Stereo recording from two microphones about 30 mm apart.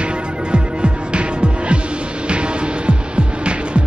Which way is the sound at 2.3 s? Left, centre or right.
Right.